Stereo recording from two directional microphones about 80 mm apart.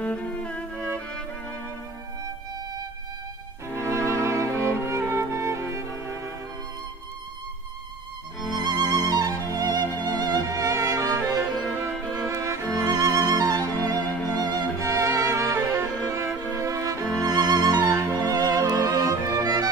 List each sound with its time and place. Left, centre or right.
0.0 s music: centre
3.8 s music: right
8.4 s music: centre
8.8 s music: left
9.1 s music: right
9.8 s music: left
10.4 s music: right
13.6 s music: left
14.8 s music: right
17.2 s music: right